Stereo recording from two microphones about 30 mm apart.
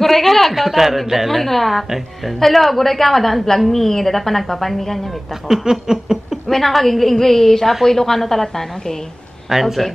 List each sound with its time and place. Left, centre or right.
0.0 s a woman's voice: centre
1.4 s a woman's voice: centre
5.5 s laughter: centre
6.5 s a woman's voice: centre
9.5 s laughter: centre